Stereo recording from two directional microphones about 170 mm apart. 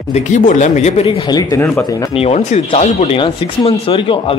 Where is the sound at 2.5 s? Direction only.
40° left (ahead or behind).